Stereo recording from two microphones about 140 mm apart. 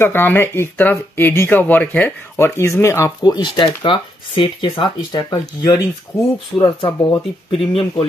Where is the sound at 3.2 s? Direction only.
30° left (ahead or behind).